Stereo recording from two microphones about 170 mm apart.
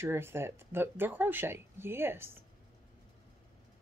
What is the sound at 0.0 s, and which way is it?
Speech, 15° right (ahead or behind).